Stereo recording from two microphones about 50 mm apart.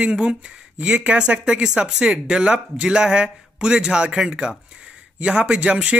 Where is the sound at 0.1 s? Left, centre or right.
Centre.